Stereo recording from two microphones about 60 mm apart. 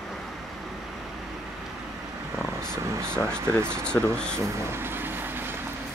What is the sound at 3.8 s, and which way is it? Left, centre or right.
Speech, centre.